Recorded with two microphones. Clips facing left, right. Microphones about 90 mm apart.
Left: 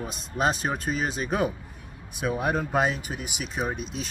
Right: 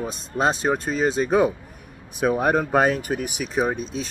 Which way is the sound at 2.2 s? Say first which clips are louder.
Right 6 dB; 55° right (ahead or behind).